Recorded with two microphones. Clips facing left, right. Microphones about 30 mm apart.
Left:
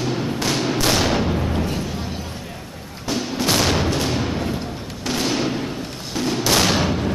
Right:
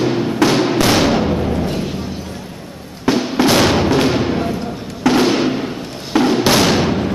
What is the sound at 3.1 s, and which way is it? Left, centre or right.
Fireworks, right.